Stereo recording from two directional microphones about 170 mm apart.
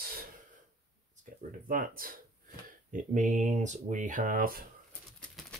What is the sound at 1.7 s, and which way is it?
Speech, 55° right (ahead or behind).